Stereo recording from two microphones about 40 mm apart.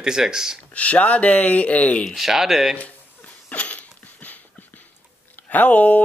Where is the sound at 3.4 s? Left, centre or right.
Left.